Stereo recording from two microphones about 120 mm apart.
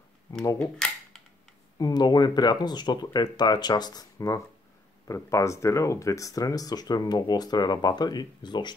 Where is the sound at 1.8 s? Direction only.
35° left (ahead or behind).